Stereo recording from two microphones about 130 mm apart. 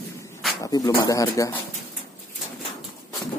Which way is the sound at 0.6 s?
30° left (ahead or behind).